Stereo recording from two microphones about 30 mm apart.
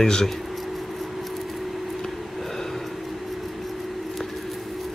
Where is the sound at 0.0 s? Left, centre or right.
Centre.